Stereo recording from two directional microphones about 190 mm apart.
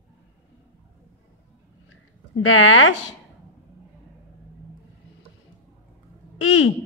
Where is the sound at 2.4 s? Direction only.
90° left.